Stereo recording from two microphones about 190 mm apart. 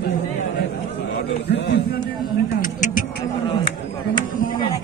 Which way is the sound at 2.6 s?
45° left (ahead or behind).